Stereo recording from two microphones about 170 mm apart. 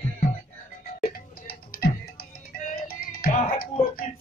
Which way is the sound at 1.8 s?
60° left (ahead or behind).